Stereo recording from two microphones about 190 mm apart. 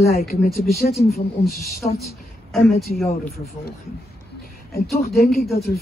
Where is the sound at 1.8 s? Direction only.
45° left (ahead or behind).